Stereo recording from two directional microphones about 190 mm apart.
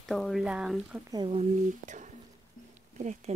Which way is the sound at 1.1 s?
30° right (ahead or behind).